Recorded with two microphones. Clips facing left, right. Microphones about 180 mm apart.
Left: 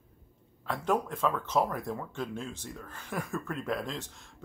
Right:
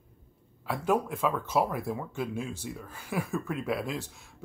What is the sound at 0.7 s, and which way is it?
Speech, 10° right (ahead or behind).